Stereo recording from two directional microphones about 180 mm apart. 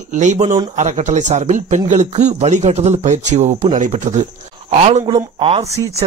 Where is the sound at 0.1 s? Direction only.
40° right (ahead or behind).